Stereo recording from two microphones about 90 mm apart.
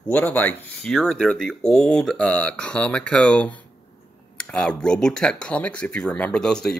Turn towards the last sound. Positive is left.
turn(degrees=5)  # may be behind; listen again after turning